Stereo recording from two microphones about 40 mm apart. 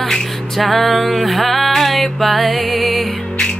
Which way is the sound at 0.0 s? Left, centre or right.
Centre.